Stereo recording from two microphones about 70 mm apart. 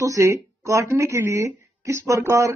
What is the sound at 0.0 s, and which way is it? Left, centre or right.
Speech, right.